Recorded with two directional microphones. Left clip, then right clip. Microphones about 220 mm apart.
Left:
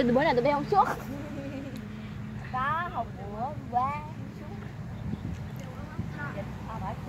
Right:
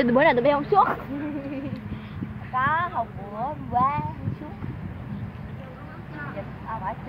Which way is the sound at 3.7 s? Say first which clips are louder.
Right 6 dB; 20° right (ahead or behind).